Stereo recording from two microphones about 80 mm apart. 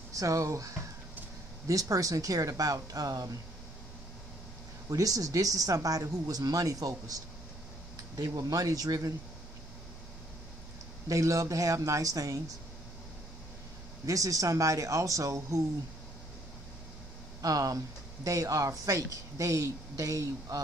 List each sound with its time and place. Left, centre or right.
0.1 s speech: right
4.8 s speech: right
8.2 s speech: right
11.1 s speech: right
14.0 s speech: right
17.4 s speech: right